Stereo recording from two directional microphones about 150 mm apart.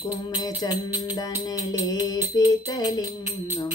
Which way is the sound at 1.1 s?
25° left (ahead or behind).